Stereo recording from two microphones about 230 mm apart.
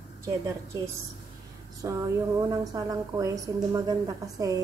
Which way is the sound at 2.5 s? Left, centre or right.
Centre.